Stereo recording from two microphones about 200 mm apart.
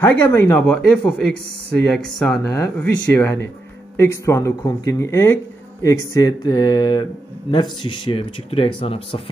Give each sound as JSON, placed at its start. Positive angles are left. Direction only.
{"t": 0.0, "sound": "speech", "side_deg": 10}